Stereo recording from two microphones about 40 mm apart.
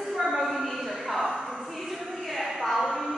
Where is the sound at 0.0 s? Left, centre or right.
Centre.